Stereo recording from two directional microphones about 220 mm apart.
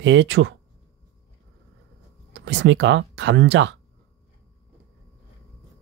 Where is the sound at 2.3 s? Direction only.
55° right (ahead or behind).